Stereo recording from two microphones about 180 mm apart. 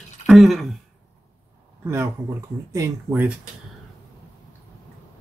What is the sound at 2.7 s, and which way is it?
Speech, 15° right (ahead or behind).